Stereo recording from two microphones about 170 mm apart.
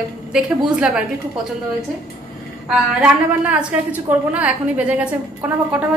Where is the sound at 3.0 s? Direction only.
5° right (ahead or behind).